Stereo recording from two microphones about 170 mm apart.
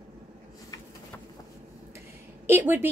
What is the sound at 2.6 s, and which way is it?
Speech, 10° right (ahead or behind).